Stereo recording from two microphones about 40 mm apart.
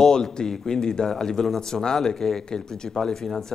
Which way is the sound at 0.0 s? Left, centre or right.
Centre.